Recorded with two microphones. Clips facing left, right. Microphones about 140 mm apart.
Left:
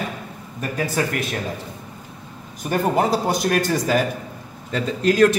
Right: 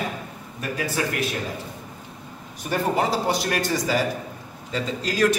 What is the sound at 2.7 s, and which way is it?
A man's voice, 45° left (ahead or behind).